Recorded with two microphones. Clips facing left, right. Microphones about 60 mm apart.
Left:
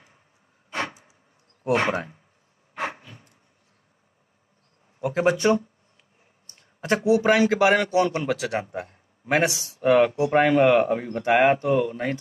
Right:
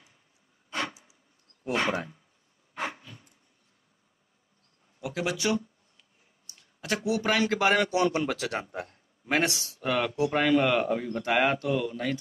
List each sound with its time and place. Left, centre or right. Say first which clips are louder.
1.8 s speech: left 4 dB; left
2.7 s a sound: left 4 dB; left
5.0 s speech: left 9 dB; left
6.4 s a sound: left 6 dB; left
7.2 s a man's voice: left 5 dB; centre
7.5 s a man's voice: left 5 dB; centre
9.8 s speech: left 9 dB; left